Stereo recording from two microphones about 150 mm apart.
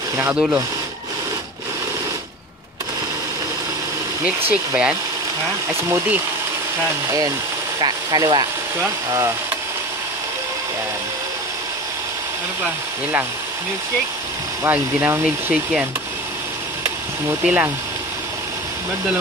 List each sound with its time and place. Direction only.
4.5 s speech: 10° right (ahead or behind)
7.8 s speech: 25° right (ahead or behind)
14.6 s speech: 15° right (ahead or behind)
17.3 s speech: 10° right (ahead or behind)